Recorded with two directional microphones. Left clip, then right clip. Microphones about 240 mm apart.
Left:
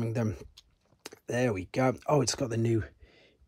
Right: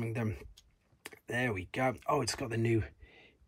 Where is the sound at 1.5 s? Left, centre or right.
Left.